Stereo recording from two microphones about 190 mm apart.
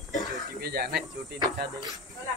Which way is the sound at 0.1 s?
20° left (ahead or behind).